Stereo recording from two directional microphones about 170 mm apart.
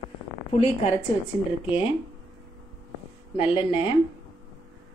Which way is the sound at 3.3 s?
30° left (ahead or behind).